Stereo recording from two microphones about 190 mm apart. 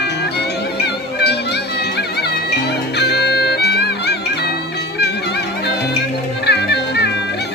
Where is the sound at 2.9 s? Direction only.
60° left (ahead or behind).